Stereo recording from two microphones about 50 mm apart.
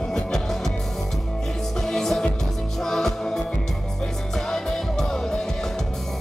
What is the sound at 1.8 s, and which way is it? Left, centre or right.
Music, centre.